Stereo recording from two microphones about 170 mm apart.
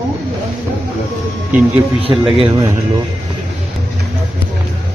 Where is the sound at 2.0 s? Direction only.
30° right (ahead or behind).